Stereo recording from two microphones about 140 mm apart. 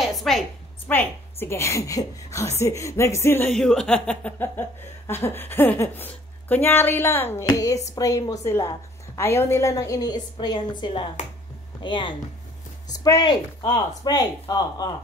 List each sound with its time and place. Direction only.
0.0 s a sound: centre (ahead or behind)
0.8 s a woman's voice: 15° left (ahead or behind)
3.5 s a woman's voice: 5° left (ahead or behind); by 14.9 s 25° left (ahead or behind)